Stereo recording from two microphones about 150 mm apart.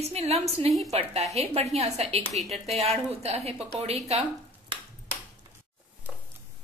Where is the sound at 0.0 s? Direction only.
45° right (ahead or behind).